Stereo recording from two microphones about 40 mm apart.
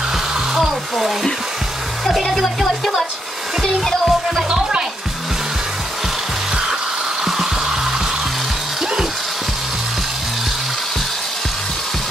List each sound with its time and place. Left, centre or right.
0.6 s a sound: centre
2.3 s music: centre
4.5 s music: right
7.2 s music: centre